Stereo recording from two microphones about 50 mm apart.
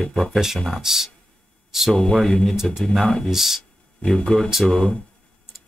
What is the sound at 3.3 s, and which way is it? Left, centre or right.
Speech, centre.